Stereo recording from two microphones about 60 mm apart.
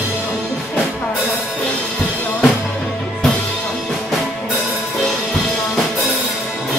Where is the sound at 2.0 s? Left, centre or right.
Left.